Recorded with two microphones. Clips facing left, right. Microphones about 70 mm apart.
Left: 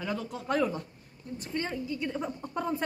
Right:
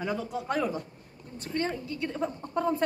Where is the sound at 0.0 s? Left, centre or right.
Centre.